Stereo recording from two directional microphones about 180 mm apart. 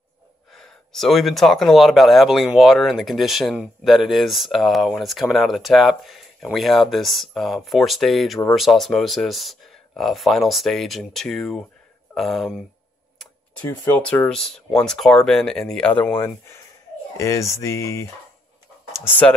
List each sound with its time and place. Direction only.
0.5 s speech: centre (ahead or behind)
13.7 s speech: 10° left (ahead or behind)
17.2 s a sound: 15° left (ahead or behind)